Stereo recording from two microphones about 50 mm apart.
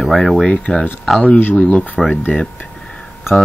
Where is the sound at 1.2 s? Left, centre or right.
Left.